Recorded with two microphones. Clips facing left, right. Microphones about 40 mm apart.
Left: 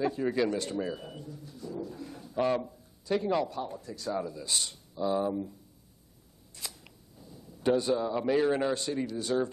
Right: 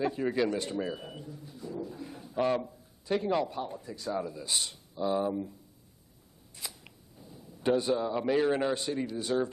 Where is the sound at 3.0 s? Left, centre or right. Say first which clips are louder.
Even; centre.